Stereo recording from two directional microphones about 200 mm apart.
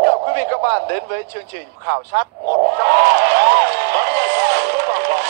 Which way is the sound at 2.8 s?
55° right (ahead or behind).